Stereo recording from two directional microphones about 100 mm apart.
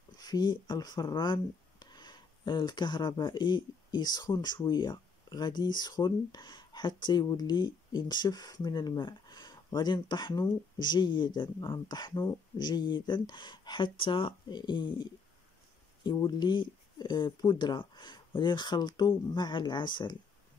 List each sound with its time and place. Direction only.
0.2 s speech: 45° left (ahead or behind)